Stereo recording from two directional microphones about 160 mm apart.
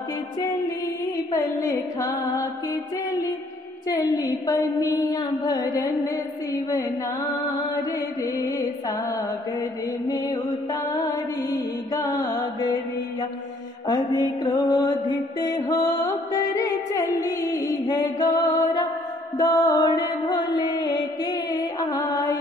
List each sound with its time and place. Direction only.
1.3 s music: 20° left (ahead or behind)
3.9 s music: 25° left (ahead or behind)
7.9 s music: 20° left (ahead or behind)
11.4 s mantra: 25° left (ahead or behind)
13.8 s music: 25° left (ahead or behind)